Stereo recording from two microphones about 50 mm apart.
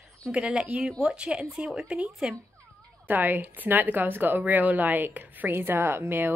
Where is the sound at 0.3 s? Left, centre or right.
Right.